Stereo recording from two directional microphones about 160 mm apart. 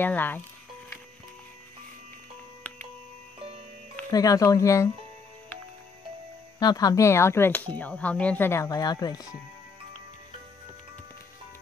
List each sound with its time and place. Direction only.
0.0 s speech: 10° left (ahead or behind)
3.3 s music: 35° right (ahead or behind)
4.1 s speech: 20° left (ahead or behind)
6.6 s speech: 25° left (ahead or behind)